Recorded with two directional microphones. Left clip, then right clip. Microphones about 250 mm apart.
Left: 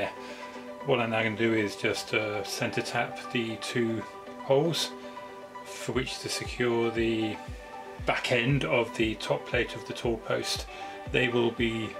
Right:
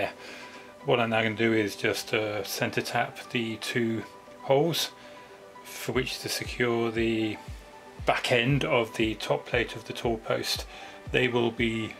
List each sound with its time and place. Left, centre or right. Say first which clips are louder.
0.8 s speech: right 2 dB; centre
5.9 s speech: right 2 dB; centre